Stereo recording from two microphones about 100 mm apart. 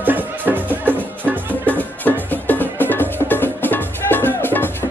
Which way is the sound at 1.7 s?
15° left (ahead or behind).